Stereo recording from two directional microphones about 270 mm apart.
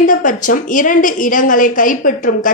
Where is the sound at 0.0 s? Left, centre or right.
Left.